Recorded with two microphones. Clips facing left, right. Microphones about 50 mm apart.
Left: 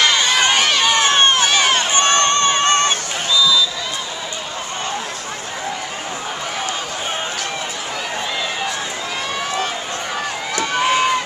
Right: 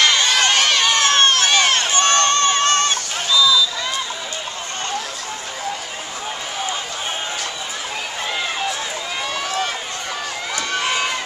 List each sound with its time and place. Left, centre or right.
0.0 s run: centre
1.9 s a sound: left
10.5 s crowd: centre